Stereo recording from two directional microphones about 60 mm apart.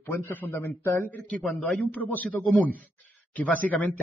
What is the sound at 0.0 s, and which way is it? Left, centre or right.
Speech, left.